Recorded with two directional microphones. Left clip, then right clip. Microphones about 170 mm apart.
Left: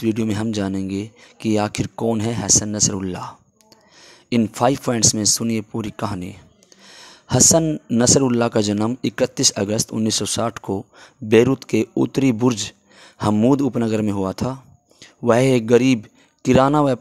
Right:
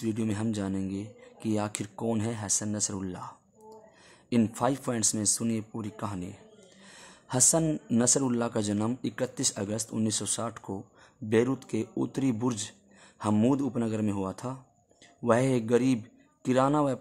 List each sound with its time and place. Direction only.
0.0 s speech: 35° left (ahead or behind)
4.6 s speech: 35° left (ahead or behind)
6.8 s a sound: 35° left (ahead or behind)
7.6 s speech: 25° left (ahead or behind)
8.0 s speech: 35° left (ahead or behind)